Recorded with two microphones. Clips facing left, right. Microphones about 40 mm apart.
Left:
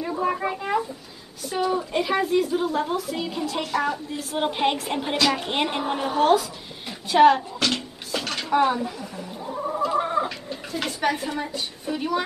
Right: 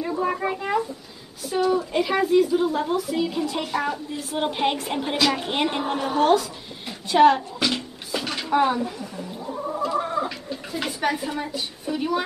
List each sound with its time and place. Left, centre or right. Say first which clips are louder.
0.0 s a woman's voice: even; centre
7.5 s a sound: even; centre
9.4 s gargling: left 1 dB; centre
10.7 s a woman's voice: even; centre